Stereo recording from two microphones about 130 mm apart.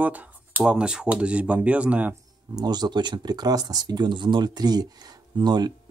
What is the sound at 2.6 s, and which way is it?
Speech, 30° right (ahead or behind).